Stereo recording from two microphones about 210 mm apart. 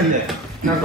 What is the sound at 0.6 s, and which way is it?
Speech, 40° right (ahead or behind).